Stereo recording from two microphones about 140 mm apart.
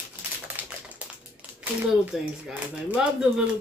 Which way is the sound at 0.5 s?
10° right (ahead or behind).